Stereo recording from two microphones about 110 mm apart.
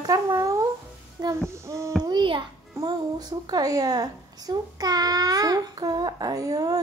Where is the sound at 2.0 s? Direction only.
45° right (ahead or behind).